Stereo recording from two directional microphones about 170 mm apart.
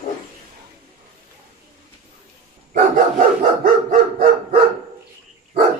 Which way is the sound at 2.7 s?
50° right (ahead or behind).